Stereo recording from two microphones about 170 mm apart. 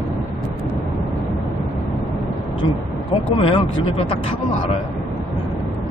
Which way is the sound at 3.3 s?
35° left (ahead or behind).